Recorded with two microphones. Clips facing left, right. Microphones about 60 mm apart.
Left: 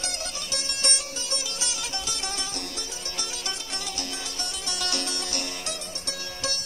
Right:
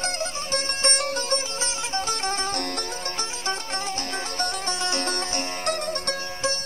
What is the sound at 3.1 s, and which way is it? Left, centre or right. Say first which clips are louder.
Music: right 4 dB; right.